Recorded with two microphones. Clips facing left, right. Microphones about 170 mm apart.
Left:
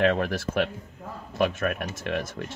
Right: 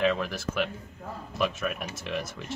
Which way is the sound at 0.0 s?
60° left (ahead or behind).